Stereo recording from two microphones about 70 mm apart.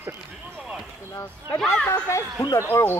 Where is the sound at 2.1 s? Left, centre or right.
Left.